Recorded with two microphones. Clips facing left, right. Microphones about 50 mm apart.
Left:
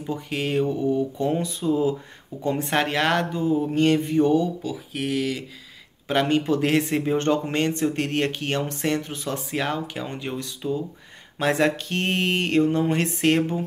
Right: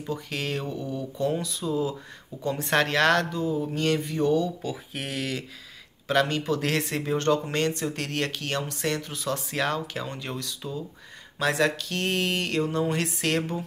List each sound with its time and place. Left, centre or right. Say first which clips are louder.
0.1 s speech: left 5 dB; left
4.6 s speech: left 5 dB; centre
6.0 s speech: left 3 dB; left